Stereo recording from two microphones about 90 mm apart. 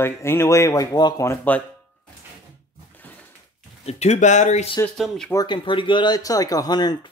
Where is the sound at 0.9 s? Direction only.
50° left (ahead or behind).